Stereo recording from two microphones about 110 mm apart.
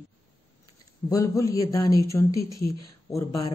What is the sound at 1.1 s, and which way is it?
Speech, 30° left (ahead or behind).